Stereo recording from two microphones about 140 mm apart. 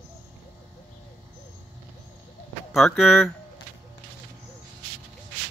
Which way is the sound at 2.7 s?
Centre (ahead or behind).